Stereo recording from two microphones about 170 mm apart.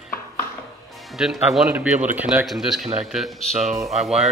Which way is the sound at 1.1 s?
Centre (ahead or behind).